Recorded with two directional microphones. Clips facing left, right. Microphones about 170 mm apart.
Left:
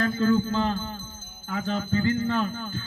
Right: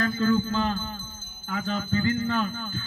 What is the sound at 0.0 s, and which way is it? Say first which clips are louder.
A man's voice: left 1 dB; 20° left (ahead or behind).